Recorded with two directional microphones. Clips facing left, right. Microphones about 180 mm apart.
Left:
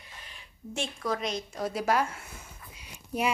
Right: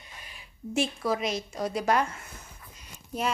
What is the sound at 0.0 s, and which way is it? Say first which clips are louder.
A woman's voice: right 1 dB; 10° right (ahead or behind).